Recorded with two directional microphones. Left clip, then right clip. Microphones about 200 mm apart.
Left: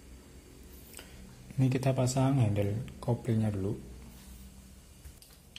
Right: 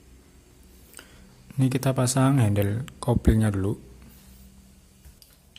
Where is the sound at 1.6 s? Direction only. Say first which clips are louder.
Right 5 dB; 30° right (ahead or behind).